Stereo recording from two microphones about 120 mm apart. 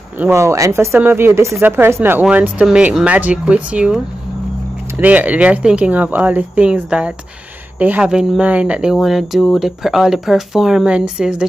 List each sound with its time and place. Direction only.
0.2 s speech: 20° right (ahead or behind); by 11.4 s 5° right (ahead or behind)